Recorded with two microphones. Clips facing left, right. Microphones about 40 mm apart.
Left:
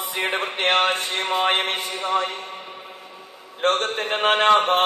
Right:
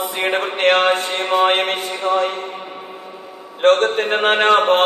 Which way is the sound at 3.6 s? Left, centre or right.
Right.